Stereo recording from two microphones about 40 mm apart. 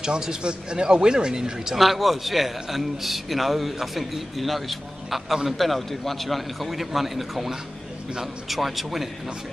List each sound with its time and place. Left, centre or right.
0.0 s speech: centre
1.8 s a man's voice: centre